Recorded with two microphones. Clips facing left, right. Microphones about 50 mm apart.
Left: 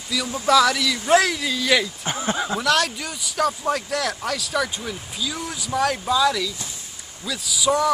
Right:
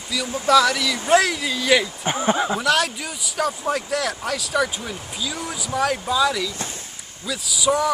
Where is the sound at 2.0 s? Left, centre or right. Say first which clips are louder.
Right 4 dB; centre.